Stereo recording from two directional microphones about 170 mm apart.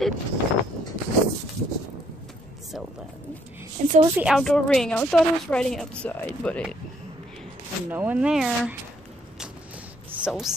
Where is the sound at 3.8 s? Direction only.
50° right (ahead or behind).